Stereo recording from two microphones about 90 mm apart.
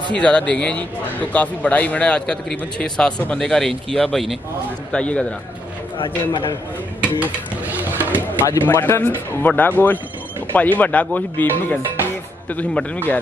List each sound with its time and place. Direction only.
0.2 s a man's voice: 10° left (ahead or behind)
4.9 s a man's voice: 15° left (ahead or behind)
5.9 s a man's voice: 75° left (ahead or behind)
7.0 s a sound: 15° right (ahead or behind)
8.5 s a man's voice: 30° left (ahead or behind)